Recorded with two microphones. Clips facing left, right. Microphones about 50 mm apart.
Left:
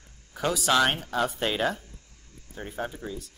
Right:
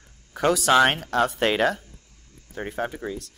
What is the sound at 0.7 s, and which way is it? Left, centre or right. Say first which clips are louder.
Speech: right 4 dB; right.